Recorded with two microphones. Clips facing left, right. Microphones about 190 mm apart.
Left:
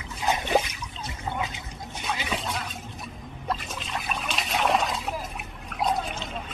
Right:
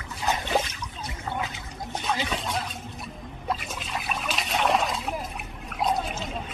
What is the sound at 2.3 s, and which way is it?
Speech, centre (ahead or behind).